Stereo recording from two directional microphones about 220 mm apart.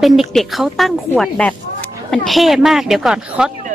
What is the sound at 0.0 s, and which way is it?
Speech, centre (ahead or behind).